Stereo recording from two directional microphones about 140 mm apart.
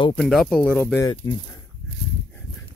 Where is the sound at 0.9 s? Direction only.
25° left (ahead or behind).